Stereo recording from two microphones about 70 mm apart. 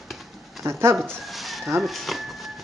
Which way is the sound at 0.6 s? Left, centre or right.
Right.